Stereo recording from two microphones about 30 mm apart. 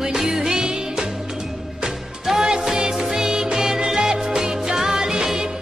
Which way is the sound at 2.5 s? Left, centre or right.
Right.